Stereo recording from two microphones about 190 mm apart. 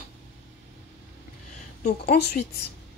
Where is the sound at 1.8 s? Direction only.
55° left (ahead or behind).